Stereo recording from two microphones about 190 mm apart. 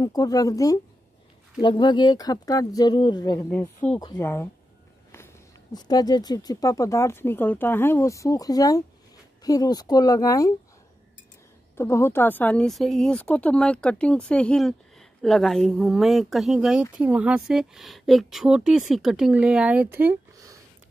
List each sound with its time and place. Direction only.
0.0 s speech: 20° left (ahead or behind)
3.4 s speech: 10° left (ahead or behind)
3.9 s speech: 20° left (ahead or behind)
11.7 s speech: 15° left (ahead or behind); by 20.5 s 15° right (ahead or behind)